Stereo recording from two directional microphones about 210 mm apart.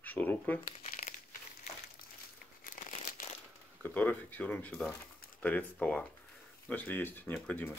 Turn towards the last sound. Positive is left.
turn(degrees=10)  # may be behind; listen again after turning